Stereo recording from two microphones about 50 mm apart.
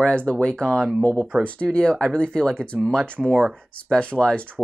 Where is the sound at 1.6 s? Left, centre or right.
Centre.